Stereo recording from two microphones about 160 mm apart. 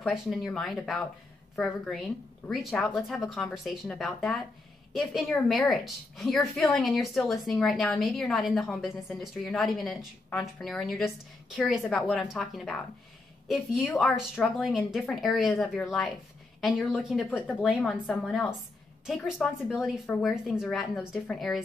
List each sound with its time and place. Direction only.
0.0 s a woman's voice: centre (ahead or behind)
17.4 s a woman's voice: 10° left (ahead or behind)
17.6 s a woman's voice: 5° right (ahead or behind)